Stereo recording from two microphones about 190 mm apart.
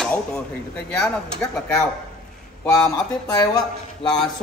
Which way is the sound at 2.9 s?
20° left (ahead or behind).